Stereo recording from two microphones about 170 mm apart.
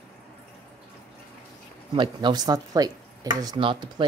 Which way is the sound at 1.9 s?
25° right (ahead or behind).